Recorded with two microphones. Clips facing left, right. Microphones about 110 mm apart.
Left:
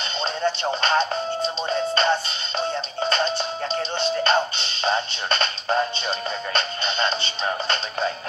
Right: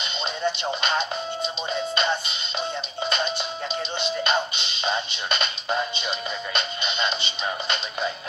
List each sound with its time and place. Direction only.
0.2 s music: 40° left (ahead or behind)